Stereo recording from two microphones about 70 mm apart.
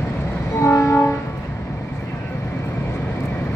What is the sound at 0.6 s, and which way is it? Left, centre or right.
Train, left.